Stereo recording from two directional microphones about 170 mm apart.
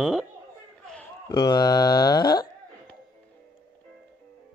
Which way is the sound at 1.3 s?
25° left (ahead or behind).